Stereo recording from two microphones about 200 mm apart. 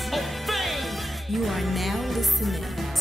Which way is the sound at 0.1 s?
Centre (ahead or behind).